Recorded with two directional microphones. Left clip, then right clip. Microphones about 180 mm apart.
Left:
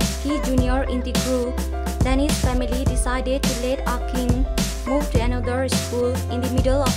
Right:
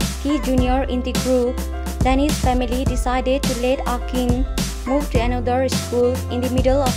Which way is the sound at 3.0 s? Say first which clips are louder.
Right 5 dB; 15° right (ahead or behind).